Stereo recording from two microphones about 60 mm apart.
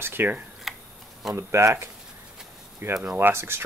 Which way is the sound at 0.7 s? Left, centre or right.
Centre.